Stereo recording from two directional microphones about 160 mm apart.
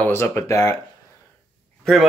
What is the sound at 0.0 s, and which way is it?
Speech, 15° left (ahead or behind).